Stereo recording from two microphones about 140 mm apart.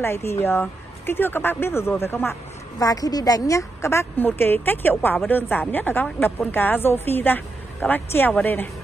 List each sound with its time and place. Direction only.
0.0 s a woman's voice: 20° left (ahead or behind)